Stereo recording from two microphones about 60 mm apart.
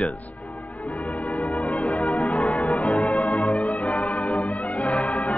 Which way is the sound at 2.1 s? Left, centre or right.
Left.